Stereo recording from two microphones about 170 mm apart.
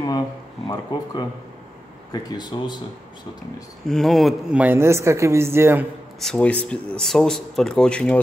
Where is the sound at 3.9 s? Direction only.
Centre (ahead or behind); by 5.8 s 15° right (ahead or behind).